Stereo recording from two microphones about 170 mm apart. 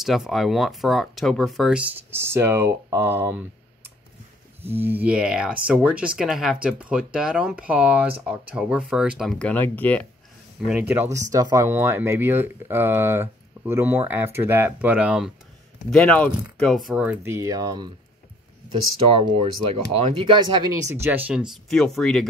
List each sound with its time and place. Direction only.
0.0 s speech: centre (ahead or behind)
4.6 s speech: 10° right (ahead or behind); by 10.0 s 10° left (ahead or behind)
10.7 s speech: 10° right (ahead or behind)
18.9 s speech: 35° right (ahead or behind); by 22.3 s centre (ahead or behind)